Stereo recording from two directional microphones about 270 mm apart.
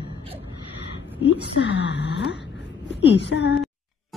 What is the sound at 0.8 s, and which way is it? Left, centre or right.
A woman's voice, left.